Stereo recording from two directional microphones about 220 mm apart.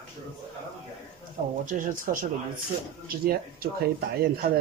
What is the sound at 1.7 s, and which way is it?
Speech, 40° right (ahead or behind).